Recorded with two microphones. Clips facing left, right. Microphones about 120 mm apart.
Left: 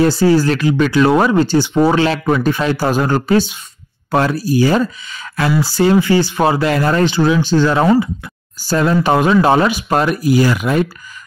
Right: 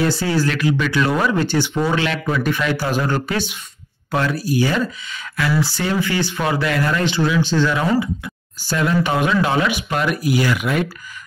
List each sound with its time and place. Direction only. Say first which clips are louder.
0.0 s speech: left 7 dB; 35° left (ahead or behind)